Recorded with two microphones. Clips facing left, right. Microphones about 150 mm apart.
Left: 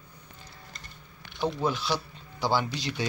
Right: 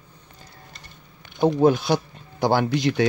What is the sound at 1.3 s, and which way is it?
Speech, 50° right (ahead or behind).